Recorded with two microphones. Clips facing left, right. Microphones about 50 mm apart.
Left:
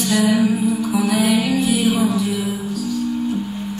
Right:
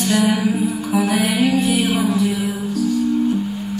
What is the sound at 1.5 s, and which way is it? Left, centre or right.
Music, right.